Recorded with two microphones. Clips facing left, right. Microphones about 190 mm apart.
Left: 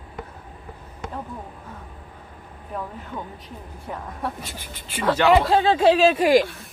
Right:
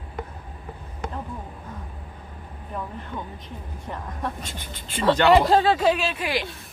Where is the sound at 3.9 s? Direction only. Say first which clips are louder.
Left 1 dB; 5° left (ahead or behind).